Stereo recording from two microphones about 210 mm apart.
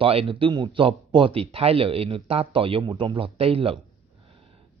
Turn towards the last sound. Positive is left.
turn(degrees=-25)  # may be behind; listen again after turning